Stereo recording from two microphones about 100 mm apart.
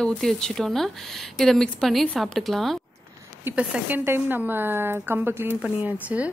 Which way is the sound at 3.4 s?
20° right (ahead or behind).